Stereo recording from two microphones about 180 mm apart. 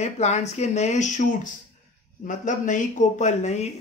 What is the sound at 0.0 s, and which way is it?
Speech, 40° left (ahead or behind).